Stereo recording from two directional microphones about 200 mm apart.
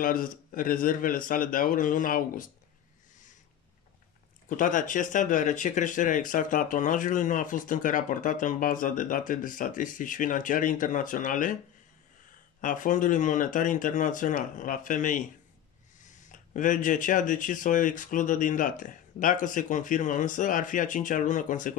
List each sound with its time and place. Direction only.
0.0 s a man's voice: 45° left (ahead or behind)
4.5 s speech: 40° left (ahead or behind)
12.5 s speech: 40° left (ahead or behind)